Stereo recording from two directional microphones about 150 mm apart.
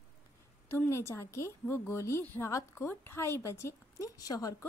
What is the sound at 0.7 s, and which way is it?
A woman's voice, 15° left (ahead or behind).